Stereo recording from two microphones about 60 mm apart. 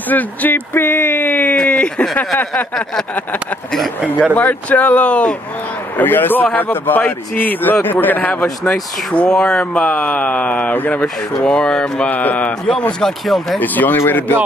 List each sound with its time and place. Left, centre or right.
0.1 s speech: left
0.7 s a sound: left
4.4 s speech: left
5.9 s a man's voice: left
11.0 s speech: centre
12.1 s speech: left
13.0 s speech: centre
13.6 s a man's voice: left